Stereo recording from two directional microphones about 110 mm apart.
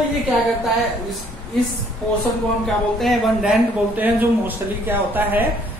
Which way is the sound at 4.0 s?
15° right (ahead or behind).